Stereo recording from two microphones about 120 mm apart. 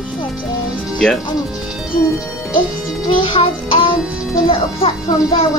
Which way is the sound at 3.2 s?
45° left (ahead or behind).